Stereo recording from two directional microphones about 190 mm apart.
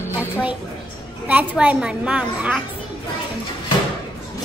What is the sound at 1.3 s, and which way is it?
A woman's voice, 10° right (ahead or behind).